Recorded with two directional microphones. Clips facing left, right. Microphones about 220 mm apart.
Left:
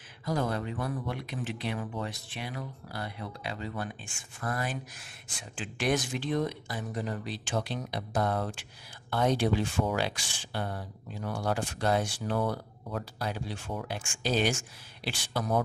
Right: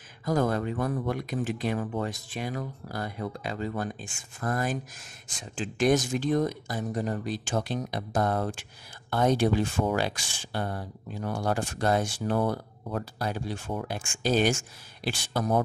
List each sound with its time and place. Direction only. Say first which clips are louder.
0.2 s speech: right 5 dB; 45° right (ahead or behind)